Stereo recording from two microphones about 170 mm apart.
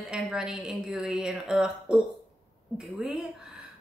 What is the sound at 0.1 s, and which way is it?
Speech, 5° right (ahead or behind).